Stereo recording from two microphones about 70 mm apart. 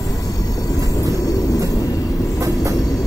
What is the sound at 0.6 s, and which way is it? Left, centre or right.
Train, left.